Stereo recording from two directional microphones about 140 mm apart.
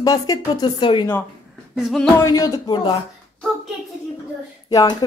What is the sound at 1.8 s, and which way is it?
Music, centre (ahead or behind).